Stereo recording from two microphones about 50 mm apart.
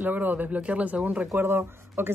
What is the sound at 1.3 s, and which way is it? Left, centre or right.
Speech, right.